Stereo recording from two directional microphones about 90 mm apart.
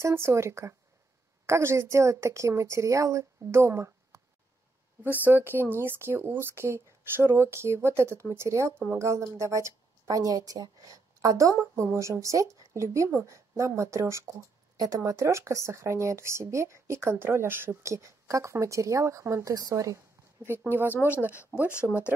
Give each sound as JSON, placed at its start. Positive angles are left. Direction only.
{"t": 0.0, "sound": "speech", "side_deg": -30}
{"t": 5.2, "sound": "speech", "side_deg": -25}
{"t": 20.4, "sound": "speech", "side_deg": -25}